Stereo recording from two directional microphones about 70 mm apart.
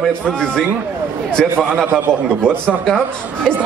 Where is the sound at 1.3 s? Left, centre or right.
Centre.